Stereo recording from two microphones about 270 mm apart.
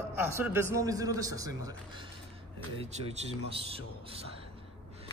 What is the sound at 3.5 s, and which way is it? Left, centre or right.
Speech, right.